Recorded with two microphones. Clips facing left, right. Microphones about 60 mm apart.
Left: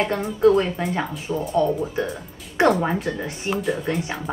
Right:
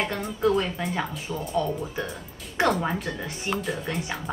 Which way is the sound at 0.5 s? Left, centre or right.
Centre.